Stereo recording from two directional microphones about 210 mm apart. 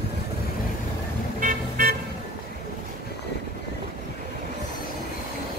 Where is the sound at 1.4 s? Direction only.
40° right (ahead or behind).